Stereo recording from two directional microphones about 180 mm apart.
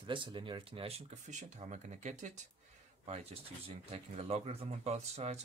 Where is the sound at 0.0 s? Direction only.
25° right (ahead or behind).